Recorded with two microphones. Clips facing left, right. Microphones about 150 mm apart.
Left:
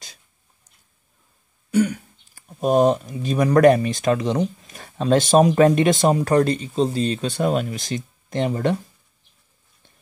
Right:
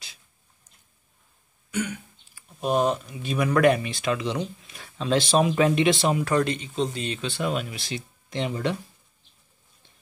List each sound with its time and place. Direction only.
1.7 s speech: 35° left (ahead or behind)